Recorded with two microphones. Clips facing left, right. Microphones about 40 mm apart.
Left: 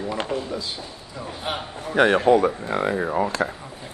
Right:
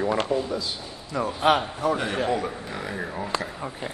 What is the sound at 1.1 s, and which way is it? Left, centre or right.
Speech, right.